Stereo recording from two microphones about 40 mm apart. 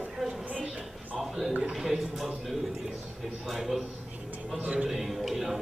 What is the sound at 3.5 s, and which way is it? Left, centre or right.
Speech, centre.